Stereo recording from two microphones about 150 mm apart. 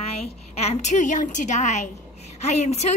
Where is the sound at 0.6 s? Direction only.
45° left (ahead or behind).